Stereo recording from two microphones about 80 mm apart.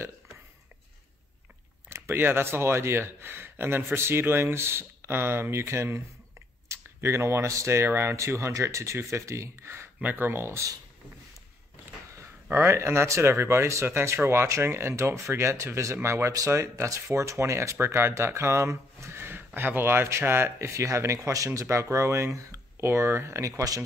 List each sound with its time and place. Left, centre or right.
1.9 s speech: right
12.2 s speech: right